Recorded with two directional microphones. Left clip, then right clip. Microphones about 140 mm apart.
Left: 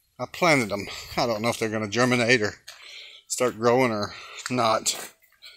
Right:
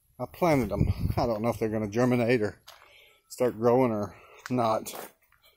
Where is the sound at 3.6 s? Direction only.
15° right (ahead or behind).